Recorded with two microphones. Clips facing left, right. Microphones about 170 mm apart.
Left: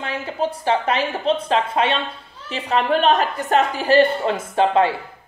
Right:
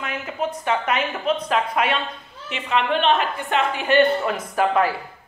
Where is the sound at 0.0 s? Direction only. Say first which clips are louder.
Left 3 dB; 30° left (ahead or behind).